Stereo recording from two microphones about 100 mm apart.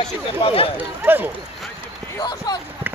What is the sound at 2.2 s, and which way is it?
Basketball bounce, 45° left (ahead or behind).